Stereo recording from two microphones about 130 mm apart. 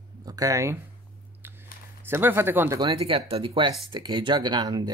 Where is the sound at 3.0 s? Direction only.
45° right (ahead or behind).